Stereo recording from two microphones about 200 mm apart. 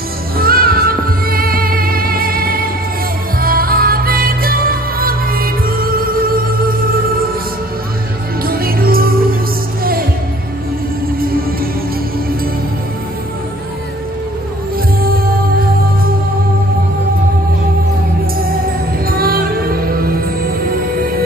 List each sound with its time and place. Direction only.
0.4 s music: 50° right (ahead or behind)
8.5 s music: 45° right (ahead or behind)
11.1 s music: 45° right (ahead or behind)
15.0 s music: 50° right (ahead or behind)
19.0 s music: 50° right (ahead or behind)